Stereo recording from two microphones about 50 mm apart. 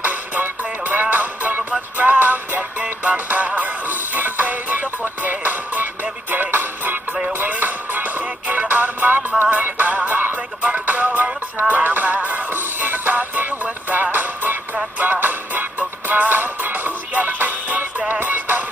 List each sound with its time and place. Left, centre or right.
0.0 s music: right